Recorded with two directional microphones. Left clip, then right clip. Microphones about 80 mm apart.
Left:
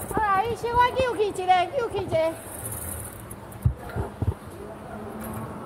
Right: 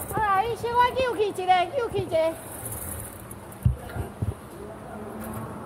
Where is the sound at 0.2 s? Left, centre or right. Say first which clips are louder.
Even; right.